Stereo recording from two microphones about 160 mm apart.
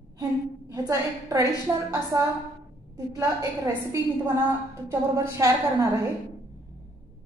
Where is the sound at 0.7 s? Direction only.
20° right (ahead or behind).